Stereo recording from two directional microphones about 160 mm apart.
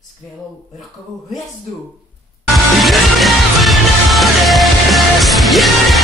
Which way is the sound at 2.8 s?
Centre (ahead or behind).